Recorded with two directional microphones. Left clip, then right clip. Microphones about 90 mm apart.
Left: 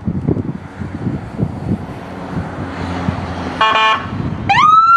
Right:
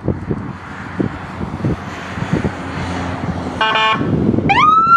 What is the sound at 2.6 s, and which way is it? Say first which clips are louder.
Vehicle: even; 5° right (ahead or behind).